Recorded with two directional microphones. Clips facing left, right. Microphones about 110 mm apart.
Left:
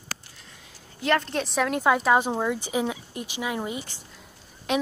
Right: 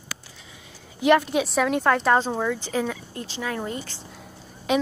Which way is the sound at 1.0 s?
10° right (ahead or behind).